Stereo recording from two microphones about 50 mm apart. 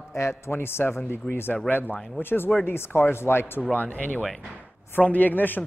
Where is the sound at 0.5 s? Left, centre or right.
Left.